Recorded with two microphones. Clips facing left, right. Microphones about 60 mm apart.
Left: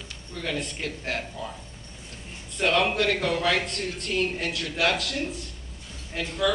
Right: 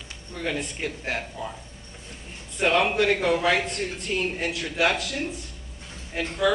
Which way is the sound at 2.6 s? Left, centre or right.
Centre.